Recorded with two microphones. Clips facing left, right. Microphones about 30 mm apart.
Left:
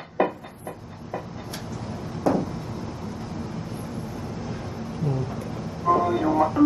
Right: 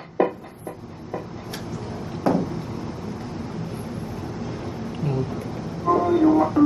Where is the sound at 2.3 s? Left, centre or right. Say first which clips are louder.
Right 1 dB; right.